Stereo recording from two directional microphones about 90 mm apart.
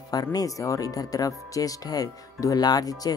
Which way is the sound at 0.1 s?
45° left (ahead or behind).